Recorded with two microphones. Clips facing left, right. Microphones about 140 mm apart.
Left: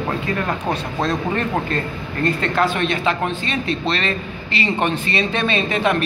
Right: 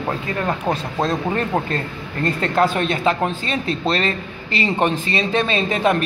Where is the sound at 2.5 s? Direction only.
35° right (ahead or behind).